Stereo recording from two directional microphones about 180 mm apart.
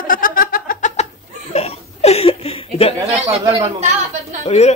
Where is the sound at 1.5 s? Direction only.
35° left (ahead or behind).